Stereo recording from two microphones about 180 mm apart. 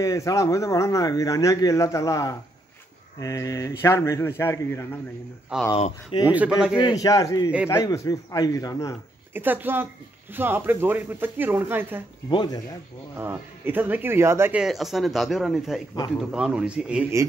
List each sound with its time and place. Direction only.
0.0 s speech: 20° left (ahead or behind)
5.5 s a man's voice: 5° right (ahead or behind)
6.8 s a man's voice: 20° left (ahead or behind)
9.3 s a man's voice: 10° right (ahead or behind)
12.3 s a man's voice: 25° left (ahead or behind)
13.2 s speech: 10° right (ahead or behind)